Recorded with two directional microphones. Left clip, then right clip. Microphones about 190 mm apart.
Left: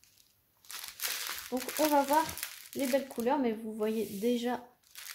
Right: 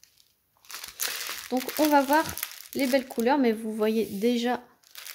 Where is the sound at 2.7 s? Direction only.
50° right (ahead or behind).